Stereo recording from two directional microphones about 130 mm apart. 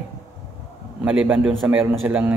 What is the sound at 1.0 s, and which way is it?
Mantra, 10° right (ahead or behind).